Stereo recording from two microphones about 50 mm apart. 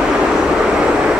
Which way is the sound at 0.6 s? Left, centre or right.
Centre.